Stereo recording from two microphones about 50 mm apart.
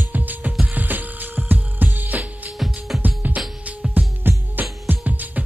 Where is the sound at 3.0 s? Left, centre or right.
Right.